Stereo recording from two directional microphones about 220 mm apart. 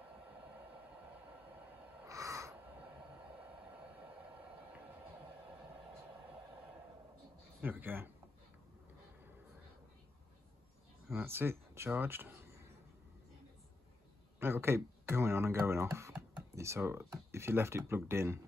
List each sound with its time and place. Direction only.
2.0 s a sound: 15° right (ahead or behind)
7.6 s speech: 10° right (ahead or behind)
11.1 s speech: 10° right (ahead or behind)
14.4 s speech: 10° right (ahead or behind)